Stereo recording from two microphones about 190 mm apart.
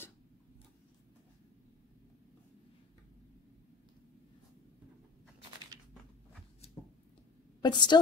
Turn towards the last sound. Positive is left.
turn(degrees=25)  # may be behind; listen again after turning